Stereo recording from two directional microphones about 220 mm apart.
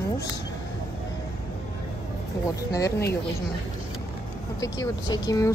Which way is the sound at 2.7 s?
15° left (ahead or behind).